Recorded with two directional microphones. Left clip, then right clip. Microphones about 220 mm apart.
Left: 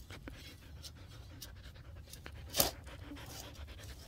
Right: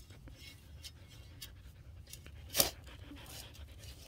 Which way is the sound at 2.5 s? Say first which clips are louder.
Right 1 dB; 10° right (ahead or behind).